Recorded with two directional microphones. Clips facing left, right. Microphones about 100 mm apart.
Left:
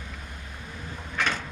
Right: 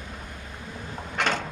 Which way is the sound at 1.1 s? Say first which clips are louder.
Right 2 dB; 70° right (ahead or behind).